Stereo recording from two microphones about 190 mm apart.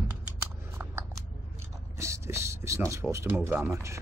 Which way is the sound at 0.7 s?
15° right (ahead or behind).